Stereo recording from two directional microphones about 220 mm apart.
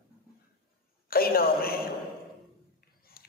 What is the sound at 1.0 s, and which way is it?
Speech, 45° left (ahead or behind).